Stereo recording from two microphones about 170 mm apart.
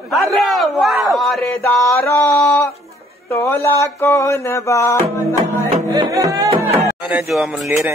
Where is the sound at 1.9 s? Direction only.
15° left (ahead or behind).